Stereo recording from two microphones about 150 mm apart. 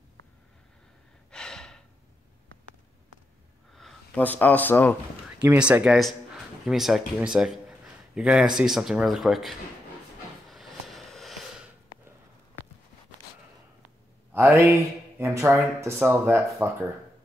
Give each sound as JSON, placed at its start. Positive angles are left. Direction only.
{"t": 1.3, "sound": "gasp", "side_deg": 5}
{"t": 3.7, "sound": "speech", "side_deg": 5}
{"t": 5.4, "sound": "speech", "side_deg": -5}
{"t": 10.5, "sound": "a sound", "side_deg": 0}
{"t": 14.3, "sound": "speech", "side_deg": -15}